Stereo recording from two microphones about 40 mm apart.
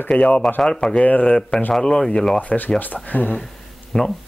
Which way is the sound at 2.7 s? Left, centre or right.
Left.